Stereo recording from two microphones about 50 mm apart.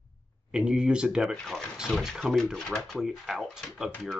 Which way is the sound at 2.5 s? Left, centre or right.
Centre.